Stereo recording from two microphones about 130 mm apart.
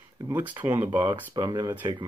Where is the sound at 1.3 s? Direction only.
30° right (ahead or behind).